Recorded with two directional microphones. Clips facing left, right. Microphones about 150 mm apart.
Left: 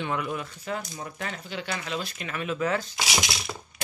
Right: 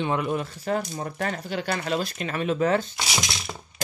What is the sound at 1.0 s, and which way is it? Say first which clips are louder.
Speech: right 6 dB; 50° right (ahead or behind).